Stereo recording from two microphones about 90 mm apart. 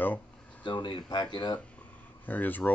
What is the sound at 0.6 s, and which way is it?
Speech, 60° left (ahead or behind).